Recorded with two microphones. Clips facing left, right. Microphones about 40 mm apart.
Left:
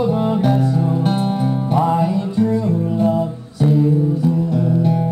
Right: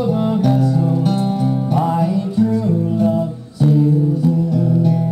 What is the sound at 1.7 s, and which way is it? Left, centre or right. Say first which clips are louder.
Music: left 2 dB; centre.